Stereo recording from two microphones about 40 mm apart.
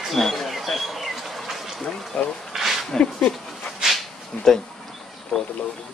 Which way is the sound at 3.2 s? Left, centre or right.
Left.